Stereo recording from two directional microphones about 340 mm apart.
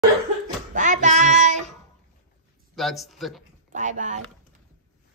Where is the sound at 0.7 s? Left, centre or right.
Right.